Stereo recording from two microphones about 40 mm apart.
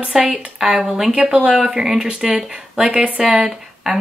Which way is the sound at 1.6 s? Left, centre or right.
Centre.